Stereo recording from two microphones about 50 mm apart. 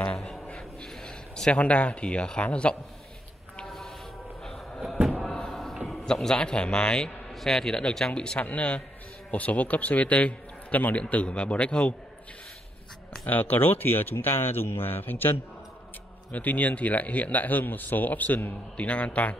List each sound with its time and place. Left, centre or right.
0.5 s a sound: centre
3.6 s a sound: centre
5.9 s a man's voice: centre
8.4 s a man's voice: left
13.2 s a man's voice: left
16.3 s speech: left
18.8 s a man's voice: left